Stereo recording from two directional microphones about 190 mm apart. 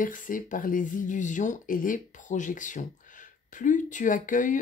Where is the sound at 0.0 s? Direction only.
45° left (ahead or behind).